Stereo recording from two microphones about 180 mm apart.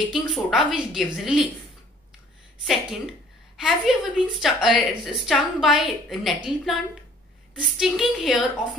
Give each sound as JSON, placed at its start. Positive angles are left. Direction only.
{"t": 0.1, "sound": "a woman's voice", "side_deg": 0}
{"t": 2.6, "sound": "a woman's voice", "side_deg": 0}
{"t": 7.8, "sound": "a woman's voice", "side_deg": 0}